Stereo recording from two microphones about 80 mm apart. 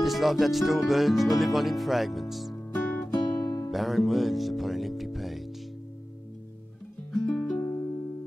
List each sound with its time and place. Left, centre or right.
0.0 s speech: centre
2.5 s music: left
3.2 s music: left
3.7 s music: centre
7.2 s music: centre